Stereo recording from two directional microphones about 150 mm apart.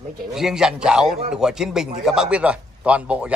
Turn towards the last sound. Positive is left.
turn(degrees=-10)  # may be behind; listen again after turning